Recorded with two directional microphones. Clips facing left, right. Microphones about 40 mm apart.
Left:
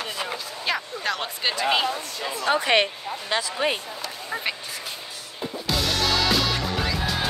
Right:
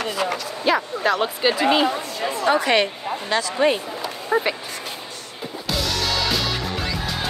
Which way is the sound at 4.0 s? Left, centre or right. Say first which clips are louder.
Right 9 dB; right.